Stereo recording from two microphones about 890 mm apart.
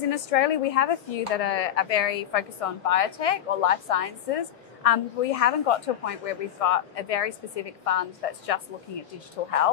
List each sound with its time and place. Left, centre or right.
0.1 s speech: left